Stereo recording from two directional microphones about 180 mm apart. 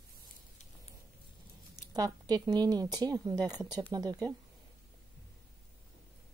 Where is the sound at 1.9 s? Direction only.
20° right (ahead or behind).